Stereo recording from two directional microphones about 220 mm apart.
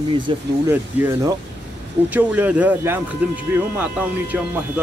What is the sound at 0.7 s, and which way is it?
Speech, 10° right (ahead or behind).